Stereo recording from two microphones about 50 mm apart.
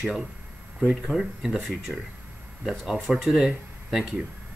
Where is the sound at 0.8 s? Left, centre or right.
Centre.